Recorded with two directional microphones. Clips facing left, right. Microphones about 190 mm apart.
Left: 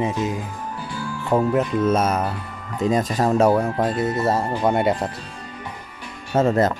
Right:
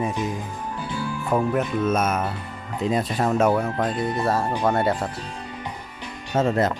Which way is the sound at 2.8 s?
45° left (ahead or behind).